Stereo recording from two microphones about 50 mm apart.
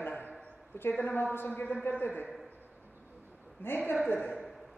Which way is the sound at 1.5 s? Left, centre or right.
Left.